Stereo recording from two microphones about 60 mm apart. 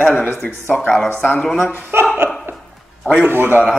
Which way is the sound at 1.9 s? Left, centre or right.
Right.